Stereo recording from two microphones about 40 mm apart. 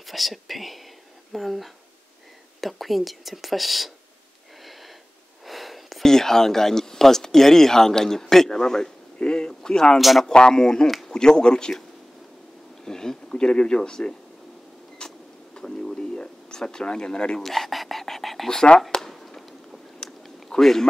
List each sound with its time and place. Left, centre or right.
0.0 s speech: centre
5.4 s a sound: centre
6.0 s speech: centre
9.9 s speech: centre
10.2 s speech: centre
12.8 s speech: centre
15.0 s a sound: centre
17.5 s whispering: centre
18.9 s a sound: centre